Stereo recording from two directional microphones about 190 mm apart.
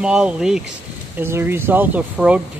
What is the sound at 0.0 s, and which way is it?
Speech, 5° right (ahead or behind).